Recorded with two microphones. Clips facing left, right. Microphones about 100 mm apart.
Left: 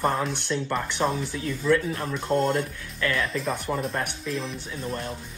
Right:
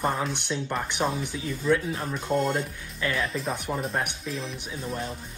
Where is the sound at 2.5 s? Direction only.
30° right (ahead or behind).